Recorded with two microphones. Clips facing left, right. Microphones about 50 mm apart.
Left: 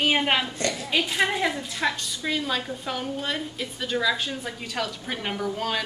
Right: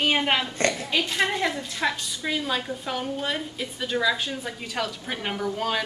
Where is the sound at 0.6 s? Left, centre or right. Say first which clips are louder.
Right 3 dB; right.